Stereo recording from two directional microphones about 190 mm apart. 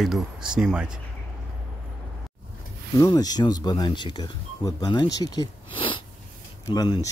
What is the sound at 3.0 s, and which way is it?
Speech, 20° left (ahead or behind).